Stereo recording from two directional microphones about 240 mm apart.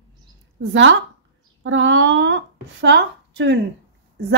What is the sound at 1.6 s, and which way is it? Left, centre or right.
A woman's voice, right.